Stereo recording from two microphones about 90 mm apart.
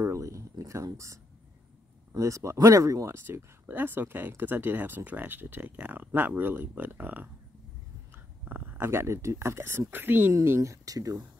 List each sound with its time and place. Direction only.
0.0 s a sound: 35° right (ahead or behind)
2.1 s speech: 35° right (ahead or behind)
3.3 s speech: 20° right (ahead or behind)
10.3 s speech: 35° right (ahead or behind)